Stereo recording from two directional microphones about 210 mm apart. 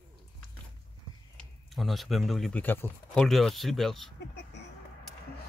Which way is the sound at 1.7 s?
Centre (ahead or behind).